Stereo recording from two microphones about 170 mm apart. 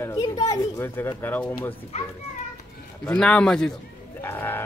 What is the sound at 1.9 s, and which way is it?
Speech, 40° left (ahead or behind).